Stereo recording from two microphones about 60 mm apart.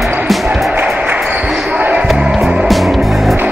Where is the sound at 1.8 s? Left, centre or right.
Right.